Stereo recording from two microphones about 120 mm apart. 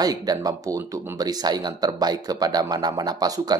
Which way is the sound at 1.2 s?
35° right (ahead or behind).